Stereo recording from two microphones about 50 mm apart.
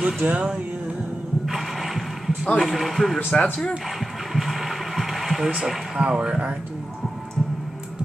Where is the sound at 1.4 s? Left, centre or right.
Centre.